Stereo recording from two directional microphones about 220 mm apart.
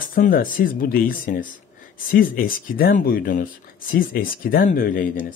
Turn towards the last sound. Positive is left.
turn(degrees=40)  # may be behind; listen again after turning